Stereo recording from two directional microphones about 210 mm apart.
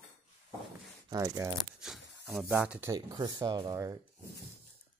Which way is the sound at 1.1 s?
15° right (ahead or behind).